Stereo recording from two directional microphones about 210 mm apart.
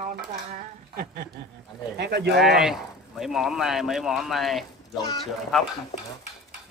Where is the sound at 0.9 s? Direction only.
45° right (ahead or behind).